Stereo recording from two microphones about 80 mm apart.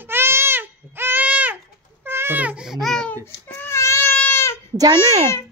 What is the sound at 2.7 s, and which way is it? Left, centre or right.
Speech, centre.